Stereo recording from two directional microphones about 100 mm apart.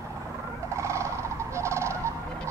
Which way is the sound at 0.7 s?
30° right (ahead or behind).